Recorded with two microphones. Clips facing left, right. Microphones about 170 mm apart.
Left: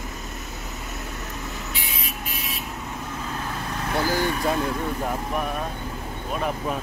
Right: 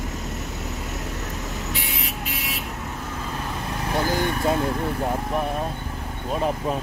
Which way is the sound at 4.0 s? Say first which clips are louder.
Even; 20° right (ahead or behind).